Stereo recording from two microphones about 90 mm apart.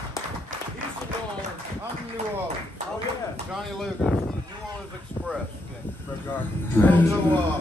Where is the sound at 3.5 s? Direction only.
Centre (ahead or behind).